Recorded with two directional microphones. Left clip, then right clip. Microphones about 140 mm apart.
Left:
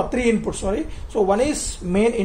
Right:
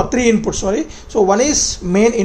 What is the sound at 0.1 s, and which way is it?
A man's voice, 35° right (ahead or behind).